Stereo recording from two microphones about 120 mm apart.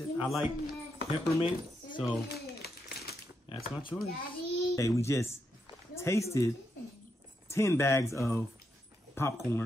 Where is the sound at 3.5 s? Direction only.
45° left (ahead or behind).